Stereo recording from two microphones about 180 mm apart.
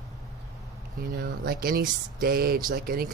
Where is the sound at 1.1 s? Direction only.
60° right (ahead or behind).